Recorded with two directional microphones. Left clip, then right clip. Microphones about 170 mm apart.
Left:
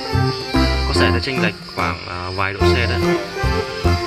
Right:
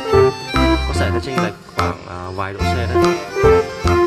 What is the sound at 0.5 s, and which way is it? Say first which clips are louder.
Music: right 3 dB; centre (ahead or behind).